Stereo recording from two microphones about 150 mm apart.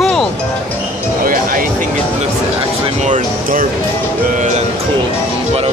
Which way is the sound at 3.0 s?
60° right (ahead or behind).